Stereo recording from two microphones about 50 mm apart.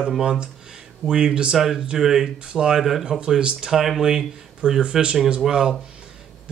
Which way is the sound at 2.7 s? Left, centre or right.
Centre.